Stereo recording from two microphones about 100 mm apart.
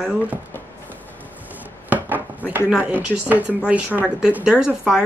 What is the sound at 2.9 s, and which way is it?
Speech, 15° right (ahead or behind).